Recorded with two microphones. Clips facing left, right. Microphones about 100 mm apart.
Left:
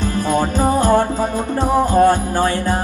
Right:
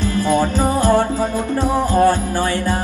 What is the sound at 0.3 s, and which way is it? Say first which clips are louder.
Music: left 1 dB; 15° left (ahead or behind).